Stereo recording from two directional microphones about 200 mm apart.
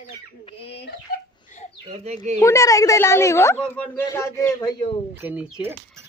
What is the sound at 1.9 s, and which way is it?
Speech, 30° right (ahead or behind).